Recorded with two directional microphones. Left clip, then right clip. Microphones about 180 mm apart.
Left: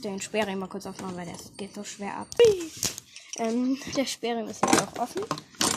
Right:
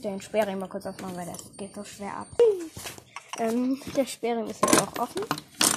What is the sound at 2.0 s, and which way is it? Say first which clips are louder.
Speech: left 1 dB; 30° left (ahead or behind).